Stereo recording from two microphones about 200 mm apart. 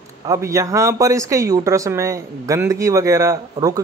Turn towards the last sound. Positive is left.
turn(degrees=-20)  # may be behind; listen again after turning